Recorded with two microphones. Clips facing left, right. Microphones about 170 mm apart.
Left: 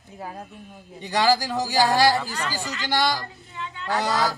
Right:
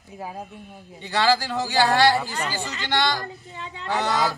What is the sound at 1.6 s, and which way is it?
Speech, 40° left (ahead or behind).